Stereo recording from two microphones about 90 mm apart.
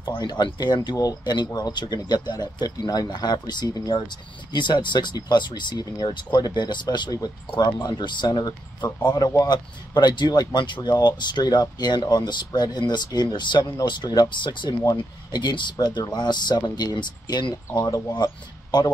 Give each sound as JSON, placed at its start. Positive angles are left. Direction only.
{"t": 0.1, "sound": "speech", "side_deg": 55}
{"t": 4.5, "sound": "speech", "side_deg": 60}
{"t": 9.1, "sound": "speech", "side_deg": 40}
{"t": 17.7, "sound": "speech", "side_deg": 40}